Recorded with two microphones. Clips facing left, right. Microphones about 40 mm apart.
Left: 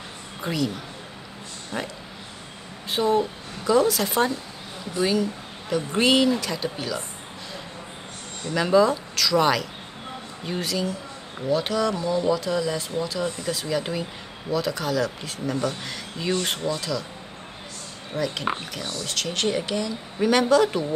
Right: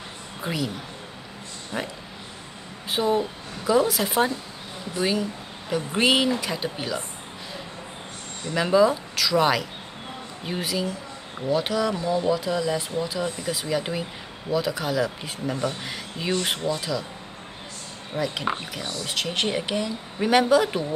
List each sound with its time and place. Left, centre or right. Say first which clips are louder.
0.4 s a woman's voice: left 2 dB; centre
1.7 s speech: even; centre
8.5 s speech: even; centre
18.1 s speech: even; centre